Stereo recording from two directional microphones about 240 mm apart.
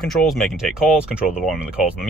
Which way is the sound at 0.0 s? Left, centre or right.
Centre.